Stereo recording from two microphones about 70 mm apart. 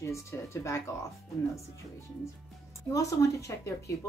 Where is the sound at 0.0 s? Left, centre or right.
Left.